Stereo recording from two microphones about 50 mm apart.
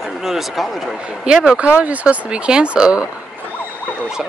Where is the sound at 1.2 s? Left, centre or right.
Centre.